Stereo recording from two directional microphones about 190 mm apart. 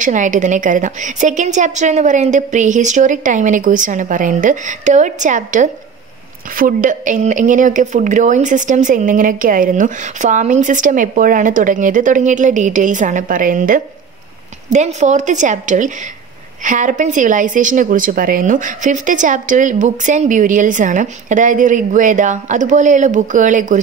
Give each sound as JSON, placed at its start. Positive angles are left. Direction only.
{"t": 0.0, "sound": "speech", "side_deg": -40}